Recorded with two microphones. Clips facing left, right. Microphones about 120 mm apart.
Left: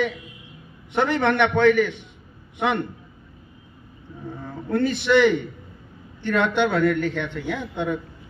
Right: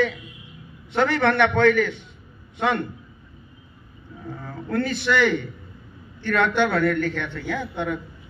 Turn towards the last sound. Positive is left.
turn(degrees=15)  # may be behind; listen again after turning